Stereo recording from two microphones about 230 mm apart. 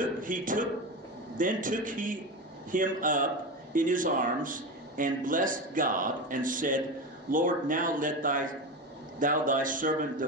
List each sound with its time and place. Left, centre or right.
0.0 s speech: right